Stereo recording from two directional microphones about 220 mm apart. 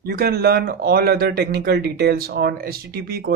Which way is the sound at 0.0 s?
45° right (ahead or behind).